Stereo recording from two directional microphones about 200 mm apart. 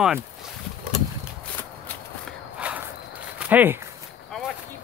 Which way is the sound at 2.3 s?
5° right (ahead or behind).